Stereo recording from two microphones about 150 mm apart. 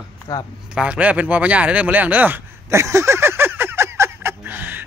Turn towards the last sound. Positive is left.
turn(degrees=-10)  # may be behind; listen again after turning